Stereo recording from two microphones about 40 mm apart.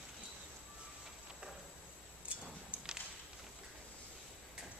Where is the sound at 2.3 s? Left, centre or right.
Right.